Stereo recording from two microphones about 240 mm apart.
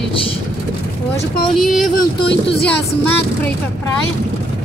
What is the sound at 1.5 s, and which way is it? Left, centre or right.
Speech, centre.